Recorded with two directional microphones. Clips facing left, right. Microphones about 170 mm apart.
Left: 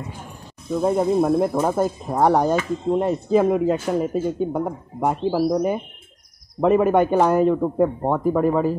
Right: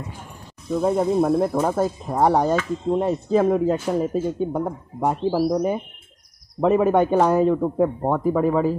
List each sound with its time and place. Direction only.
0.7 s a man's voice: 5° left (ahead or behind)
5.3 s speech: 5° right (ahead or behind)
6.6 s a man's voice: centre (ahead or behind)